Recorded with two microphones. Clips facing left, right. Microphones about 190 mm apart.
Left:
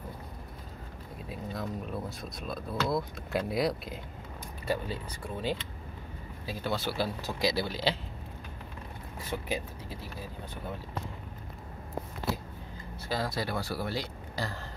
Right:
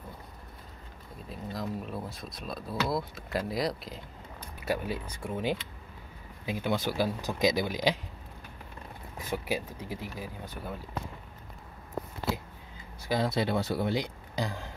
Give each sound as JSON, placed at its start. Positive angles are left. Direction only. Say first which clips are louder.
{"t": 1.3, "sound": "speech", "louder": "right 1 dB", "side_deg": 0}
{"t": 4.6, "sound": "speech", "louder": "right 1 dB", "side_deg": -15}
{"t": 9.2, "sound": "speech", "louder": "right 2 dB", "side_deg": -10}
{"t": 13.1, "sound": "speech", "louder": "right 4 dB", "side_deg": -20}